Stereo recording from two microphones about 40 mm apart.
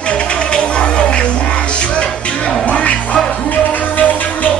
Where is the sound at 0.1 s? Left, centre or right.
Left.